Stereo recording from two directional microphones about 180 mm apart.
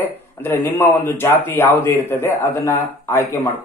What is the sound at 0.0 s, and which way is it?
A man's voice, 10° left (ahead or behind).